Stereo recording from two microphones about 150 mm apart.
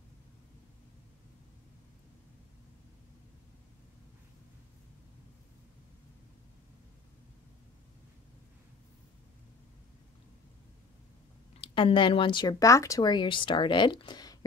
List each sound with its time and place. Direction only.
11.6 s speech: 35° left (ahead or behind)